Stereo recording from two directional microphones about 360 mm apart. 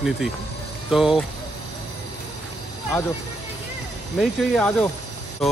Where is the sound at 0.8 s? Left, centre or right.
Centre.